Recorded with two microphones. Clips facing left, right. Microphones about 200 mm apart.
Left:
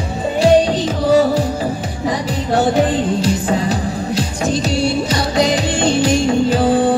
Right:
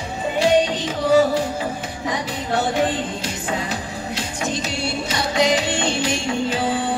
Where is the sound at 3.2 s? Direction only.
35° left (ahead or behind).